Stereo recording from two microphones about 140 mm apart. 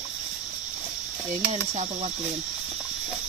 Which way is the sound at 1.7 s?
55° right (ahead or behind).